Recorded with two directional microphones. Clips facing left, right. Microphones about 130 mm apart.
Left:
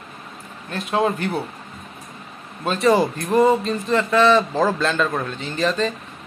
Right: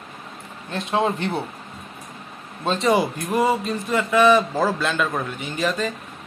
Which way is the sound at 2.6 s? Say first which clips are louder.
Left 2 dB; 20° right (ahead or behind).